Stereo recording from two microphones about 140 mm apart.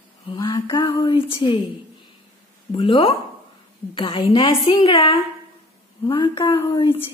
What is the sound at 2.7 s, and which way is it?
A woman's voice, 35° left (ahead or behind).